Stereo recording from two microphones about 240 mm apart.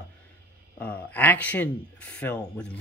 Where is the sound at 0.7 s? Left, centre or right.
Centre.